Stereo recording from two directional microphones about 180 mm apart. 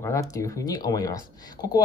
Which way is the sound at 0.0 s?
15° left (ahead or behind).